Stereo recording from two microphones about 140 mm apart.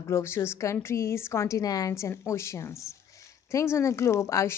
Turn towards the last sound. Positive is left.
turn(degrees=20)  # may be behind; listen again after turning